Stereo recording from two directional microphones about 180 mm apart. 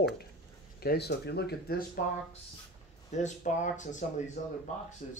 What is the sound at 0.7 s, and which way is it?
Speech, 60° left (ahead or behind).